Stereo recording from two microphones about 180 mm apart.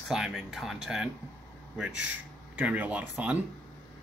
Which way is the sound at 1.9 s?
90° right.